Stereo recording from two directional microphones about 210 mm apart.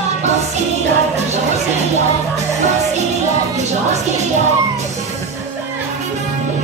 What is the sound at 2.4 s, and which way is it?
Music, 30° right (ahead or behind).